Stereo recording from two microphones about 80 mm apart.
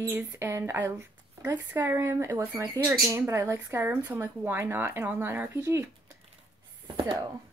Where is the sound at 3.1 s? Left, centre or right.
Right.